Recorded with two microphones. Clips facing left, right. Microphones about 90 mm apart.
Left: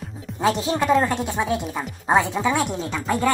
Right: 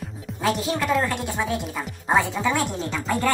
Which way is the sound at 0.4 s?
30° left (ahead or behind).